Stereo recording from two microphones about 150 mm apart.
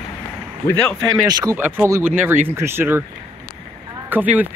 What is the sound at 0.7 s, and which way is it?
Speech, 10° left (ahead or behind).